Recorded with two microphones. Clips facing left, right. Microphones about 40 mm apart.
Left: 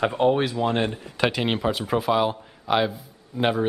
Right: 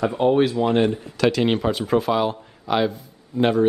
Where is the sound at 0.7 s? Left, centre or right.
Centre.